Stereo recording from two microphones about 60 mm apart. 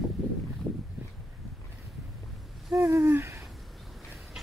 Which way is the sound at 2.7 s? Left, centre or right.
Right.